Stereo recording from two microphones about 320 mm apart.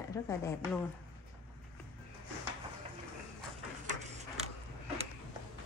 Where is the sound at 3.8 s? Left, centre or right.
Right.